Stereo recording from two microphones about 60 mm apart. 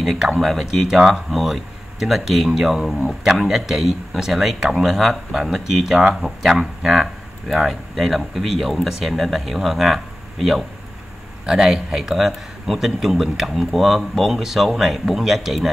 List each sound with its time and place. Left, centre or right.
0.4 s a man's voice: centre